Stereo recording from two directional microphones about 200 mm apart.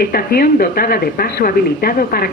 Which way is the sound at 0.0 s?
50° left (ahead or behind).